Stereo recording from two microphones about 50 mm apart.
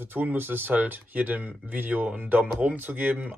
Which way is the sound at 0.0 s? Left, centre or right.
Right.